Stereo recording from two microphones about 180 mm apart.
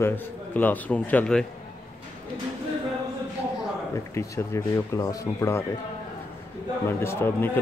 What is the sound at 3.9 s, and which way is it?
Speech, 15° left (ahead or behind).